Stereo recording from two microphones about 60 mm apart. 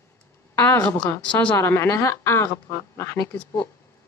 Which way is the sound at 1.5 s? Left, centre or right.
Left.